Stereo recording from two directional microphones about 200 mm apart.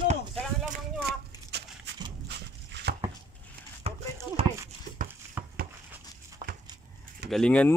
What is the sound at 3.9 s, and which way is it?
Clip-clop, 30° right (ahead or behind).